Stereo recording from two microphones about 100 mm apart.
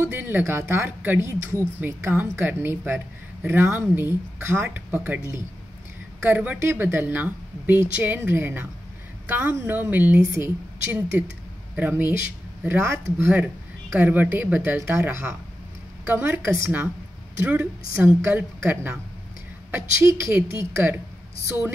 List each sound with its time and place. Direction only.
0.0 s speech: 20° right (ahead or behind)
17.9 s speech: 25° right (ahead or behind)